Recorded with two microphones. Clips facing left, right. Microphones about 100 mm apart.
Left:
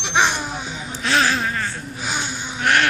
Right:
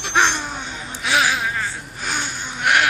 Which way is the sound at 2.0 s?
10° left (ahead or behind).